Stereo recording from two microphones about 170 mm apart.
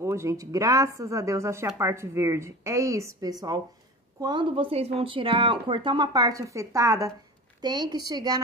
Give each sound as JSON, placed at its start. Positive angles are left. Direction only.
{"t": 0.0, "sound": "a woman's voice", "side_deg": -15}